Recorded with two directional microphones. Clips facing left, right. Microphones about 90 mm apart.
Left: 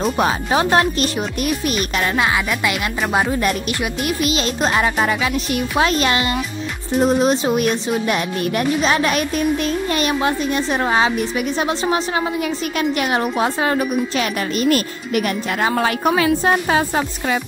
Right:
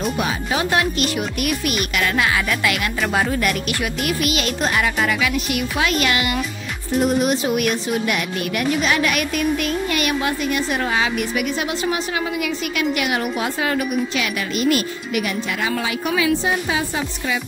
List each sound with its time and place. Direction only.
0.0 s speech: 35° left (ahead or behind)